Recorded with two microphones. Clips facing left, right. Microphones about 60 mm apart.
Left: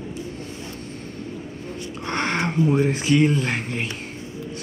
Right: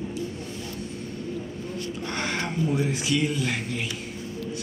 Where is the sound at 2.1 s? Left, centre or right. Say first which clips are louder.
Left 7 dB; left.